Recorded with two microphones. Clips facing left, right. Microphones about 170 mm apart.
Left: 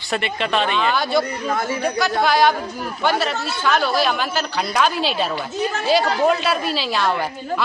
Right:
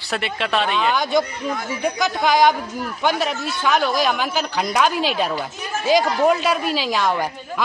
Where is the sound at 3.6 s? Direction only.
15° right (ahead or behind).